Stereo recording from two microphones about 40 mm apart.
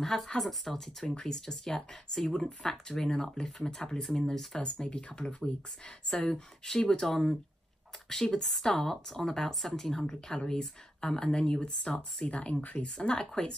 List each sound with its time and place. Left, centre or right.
0.0 s speech: centre
1.0 s a woman's voice: centre
4.6 s speech: left
5.2 s a woman's voice: centre